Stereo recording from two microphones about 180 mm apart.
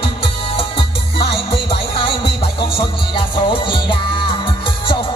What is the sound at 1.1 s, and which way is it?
Music, 30° left (ahead or behind).